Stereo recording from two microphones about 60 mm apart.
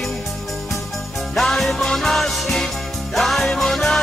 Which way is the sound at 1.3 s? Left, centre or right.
Centre.